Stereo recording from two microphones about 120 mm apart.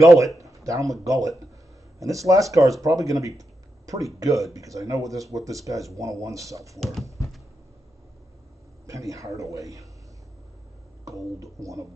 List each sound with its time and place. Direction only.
0.4 s a sound: 25° right (ahead or behind)
1.0 s speech: 25° right (ahead or behind)
6.8 s speech: centre (ahead or behind)
8.8 s speech: 25° right (ahead or behind)
11.1 s speech: 30° right (ahead or behind)